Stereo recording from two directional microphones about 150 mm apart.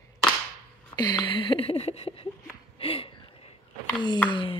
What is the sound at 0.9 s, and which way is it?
Speech, 30° left (ahead or behind).